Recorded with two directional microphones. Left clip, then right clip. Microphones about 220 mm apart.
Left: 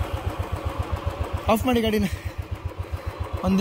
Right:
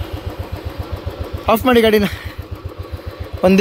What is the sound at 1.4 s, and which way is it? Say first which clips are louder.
Speech: right 10 dB; centre (ahead or behind).